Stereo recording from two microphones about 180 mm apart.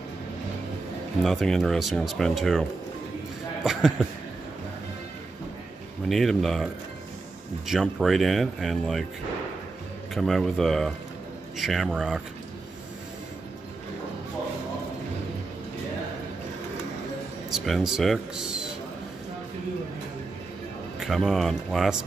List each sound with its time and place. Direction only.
1.2 s speech: centre (ahead or behind)
6.0 s speech: centre (ahead or behind)
10.1 s speech: centre (ahead or behind)
17.5 s speech: centre (ahead or behind)
21.0 s speech: centre (ahead or behind)